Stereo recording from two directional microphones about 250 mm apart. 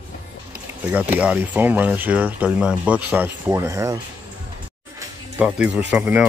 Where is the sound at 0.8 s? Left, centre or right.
Centre.